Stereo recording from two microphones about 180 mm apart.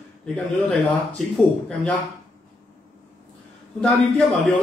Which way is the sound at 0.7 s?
5° left (ahead or behind).